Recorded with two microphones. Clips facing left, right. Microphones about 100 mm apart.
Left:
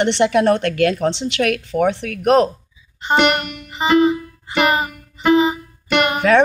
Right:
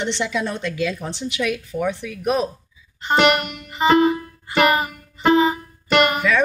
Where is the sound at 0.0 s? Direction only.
65° left (ahead or behind).